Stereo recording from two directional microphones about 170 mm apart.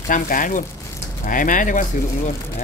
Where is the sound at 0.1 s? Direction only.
50° left (ahead or behind).